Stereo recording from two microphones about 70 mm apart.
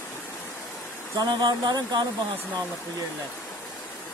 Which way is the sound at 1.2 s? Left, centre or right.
Right.